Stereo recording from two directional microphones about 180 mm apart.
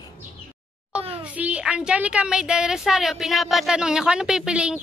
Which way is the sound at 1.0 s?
30° right (ahead or behind).